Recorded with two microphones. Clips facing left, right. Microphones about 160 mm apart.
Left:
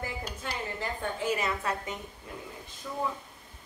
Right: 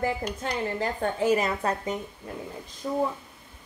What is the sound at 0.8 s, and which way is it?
Speech, 40° right (ahead or behind).